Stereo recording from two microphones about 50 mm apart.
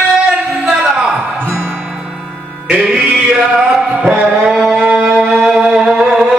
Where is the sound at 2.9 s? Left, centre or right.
Centre.